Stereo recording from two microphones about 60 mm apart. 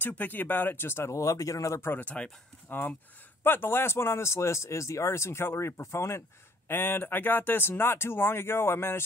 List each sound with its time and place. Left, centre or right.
0.0 s speech: left
1.1 s speech: left
2.0 s speech: left
2.7 s speech: left
6.7 s speech: left